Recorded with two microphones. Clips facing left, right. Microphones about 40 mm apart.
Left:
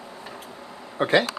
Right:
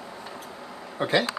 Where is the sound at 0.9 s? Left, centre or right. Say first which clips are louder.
Left 4 dB; centre.